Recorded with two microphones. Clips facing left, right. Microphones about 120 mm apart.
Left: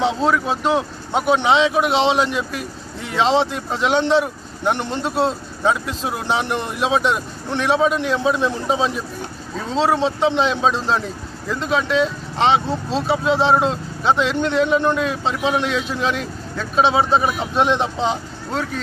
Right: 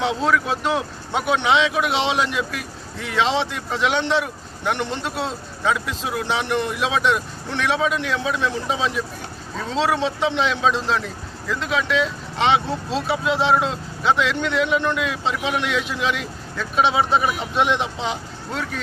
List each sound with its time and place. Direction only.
0.3 s speech: 30° left (ahead or behind)